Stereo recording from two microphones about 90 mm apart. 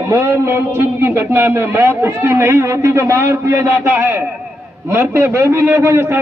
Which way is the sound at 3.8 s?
25° right (ahead or behind).